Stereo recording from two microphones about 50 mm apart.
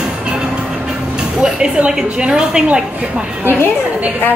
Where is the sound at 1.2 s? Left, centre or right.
Centre.